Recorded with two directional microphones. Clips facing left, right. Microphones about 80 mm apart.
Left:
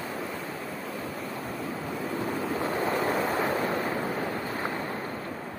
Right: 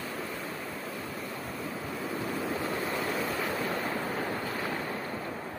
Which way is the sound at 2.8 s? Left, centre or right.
Left.